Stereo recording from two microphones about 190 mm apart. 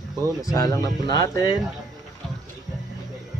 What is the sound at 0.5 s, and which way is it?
Speech, 20° left (ahead or behind).